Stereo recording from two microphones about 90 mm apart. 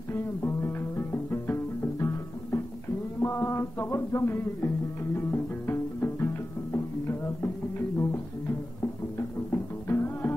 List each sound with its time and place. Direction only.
0.1 s music: 25° left (ahead or behind)
3.2 s music: 25° left (ahead or behind)